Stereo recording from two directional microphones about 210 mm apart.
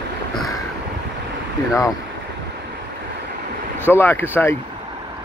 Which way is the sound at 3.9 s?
10° left (ahead or behind).